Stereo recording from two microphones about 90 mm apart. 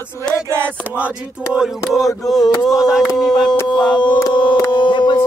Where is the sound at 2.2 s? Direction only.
Centre (ahead or behind).